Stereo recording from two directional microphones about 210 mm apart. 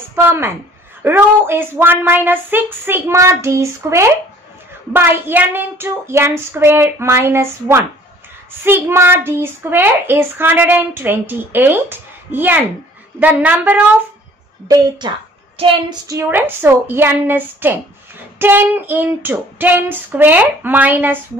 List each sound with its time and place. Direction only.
0.1 s a woman's voice: 10° right (ahead or behind)
14.7 s a woman's voice: 20° right (ahead or behind)
16.1 s a child's voice: 10° right (ahead or behind)